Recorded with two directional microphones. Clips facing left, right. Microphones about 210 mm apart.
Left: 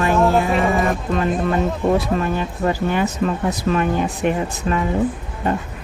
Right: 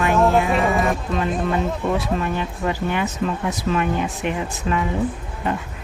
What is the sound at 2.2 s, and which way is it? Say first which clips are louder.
Speech: left 3 dB; 40° left (ahead or behind).